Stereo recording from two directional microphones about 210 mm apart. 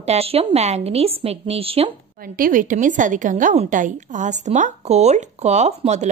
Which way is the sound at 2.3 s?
40° right (ahead or behind).